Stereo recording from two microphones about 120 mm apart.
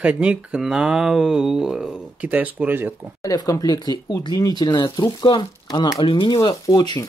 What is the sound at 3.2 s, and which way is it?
Speech, 30° left (ahead or behind).